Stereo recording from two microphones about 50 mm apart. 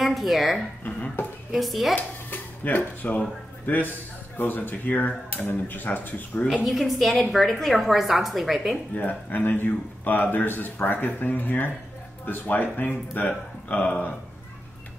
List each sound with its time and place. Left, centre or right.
0.0 s speech: centre
1.2 s speech: left
1.5 s a woman's voice: centre
2.0 s a man's voice: left
6.6 s a woman's voice: centre
8.9 s a man's voice: left